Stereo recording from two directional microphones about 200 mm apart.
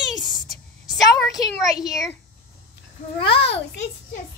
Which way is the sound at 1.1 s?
Centre (ahead or behind).